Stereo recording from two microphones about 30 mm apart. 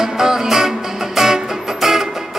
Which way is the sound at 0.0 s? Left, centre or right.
Centre.